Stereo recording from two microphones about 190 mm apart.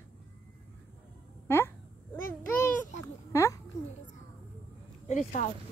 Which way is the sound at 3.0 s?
15° left (ahead or behind).